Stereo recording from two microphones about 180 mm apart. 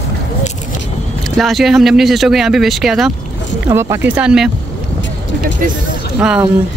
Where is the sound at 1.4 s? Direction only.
Centre (ahead or behind).